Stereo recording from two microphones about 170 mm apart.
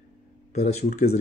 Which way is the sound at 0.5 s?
40° left (ahead or behind).